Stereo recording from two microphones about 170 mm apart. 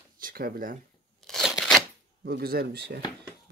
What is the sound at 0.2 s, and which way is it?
Speech, 60° right (ahead or behind).